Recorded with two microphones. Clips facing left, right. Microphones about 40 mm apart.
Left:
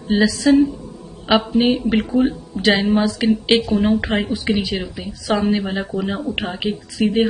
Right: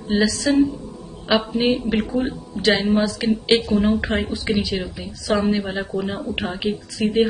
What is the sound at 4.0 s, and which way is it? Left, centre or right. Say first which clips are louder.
Speech: left 2 dB; centre.